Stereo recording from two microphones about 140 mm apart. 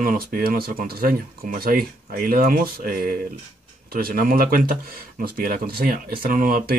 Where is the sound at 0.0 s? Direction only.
90° right.